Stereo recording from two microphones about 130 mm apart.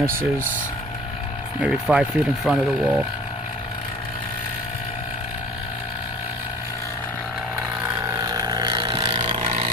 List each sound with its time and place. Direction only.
1.6 s speech: 5° right (ahead or behind)
8.1 s vehicle: 25° right (ahead or behind)